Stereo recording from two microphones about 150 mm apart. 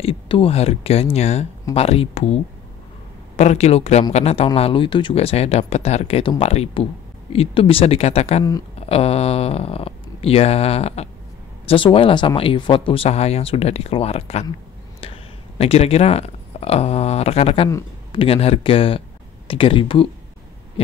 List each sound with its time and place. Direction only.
0.0 s speech: 40° left (ahead or behind)